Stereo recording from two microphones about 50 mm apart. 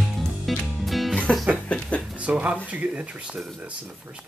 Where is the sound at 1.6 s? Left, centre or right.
Left.